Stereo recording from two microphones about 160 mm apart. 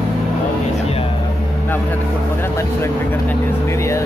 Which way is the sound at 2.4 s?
15° left (ahead or behind).